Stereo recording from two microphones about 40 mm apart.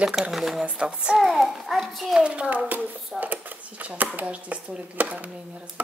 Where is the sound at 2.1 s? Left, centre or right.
Right.